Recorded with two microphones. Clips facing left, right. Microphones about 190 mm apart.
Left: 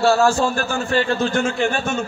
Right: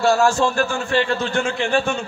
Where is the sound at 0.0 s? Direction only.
35° left (ahead or behind).